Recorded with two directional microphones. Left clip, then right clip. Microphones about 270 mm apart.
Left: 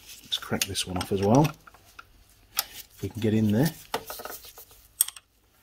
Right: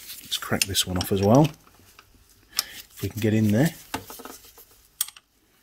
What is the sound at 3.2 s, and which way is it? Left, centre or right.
Speech, right.